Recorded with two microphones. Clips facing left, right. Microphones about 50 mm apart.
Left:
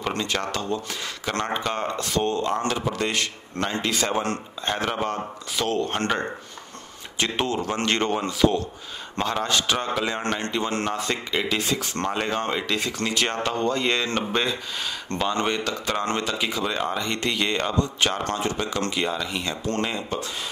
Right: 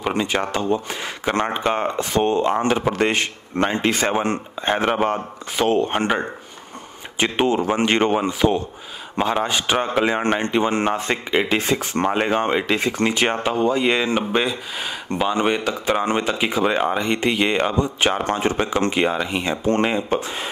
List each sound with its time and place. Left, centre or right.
0.0 s speech: centre